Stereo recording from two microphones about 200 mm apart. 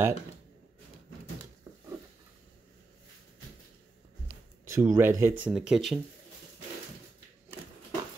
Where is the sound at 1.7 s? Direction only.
15° right (ahead or behind).